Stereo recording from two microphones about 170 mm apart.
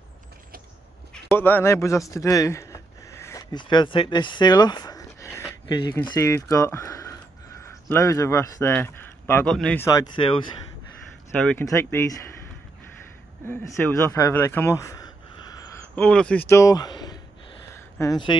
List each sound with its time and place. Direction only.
1.1 s a sound: 10° left (ahead or behind)
3.5 s speech: 25° left (ahead or behind); by 9.8 s 5° left (ahead or behind)
9.8 s speech: 20° left (ahead or behind)
11.5 s speech: 15° left (ahead or behind)
13.5 s speech: 15° left (ahead or behind)
16.0 s speech: 5° left (ahead or behind); by 18.4 s 25° left (ahead or behind)